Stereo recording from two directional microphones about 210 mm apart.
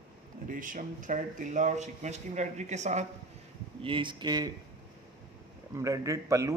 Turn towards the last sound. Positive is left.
turn(degrees=-15)  # may be behind; listen again after turning